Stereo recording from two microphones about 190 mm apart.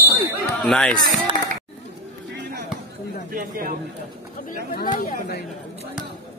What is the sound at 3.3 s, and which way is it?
Speech, 45° right (ahead or behind).